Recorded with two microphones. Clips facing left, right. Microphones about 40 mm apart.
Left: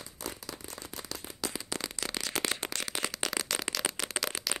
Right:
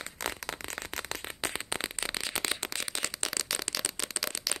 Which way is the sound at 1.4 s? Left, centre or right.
Right.